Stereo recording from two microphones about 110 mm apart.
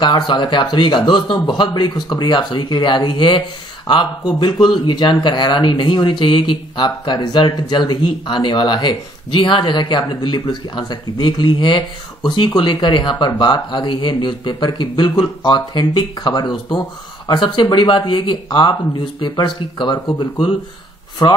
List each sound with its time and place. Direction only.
0.0 s speech: 40° left (ahead or behind)
20.2 s speech: 60° left (ahead or behind)